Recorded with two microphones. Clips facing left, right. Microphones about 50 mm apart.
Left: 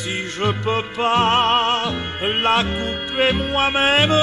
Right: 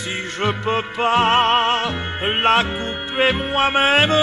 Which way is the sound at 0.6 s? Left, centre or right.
Centre.